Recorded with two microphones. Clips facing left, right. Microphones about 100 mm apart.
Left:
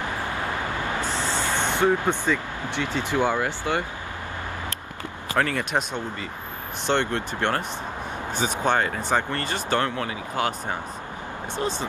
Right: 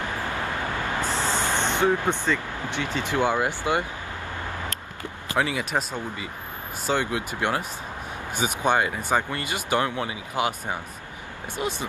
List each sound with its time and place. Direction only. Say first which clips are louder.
1.0 s a sound: right 1 dB; 15° left (ahead or behind)
1.3 s vehicle: even; 20° right (ahead or behind)
2.2 s speech: left 1 dB; 15° left (ahead or behind)
3.0 s speech: even; 15° right (ahead or behind)
5.3 s speech: left 1 dB; 10° right (ahead or behind)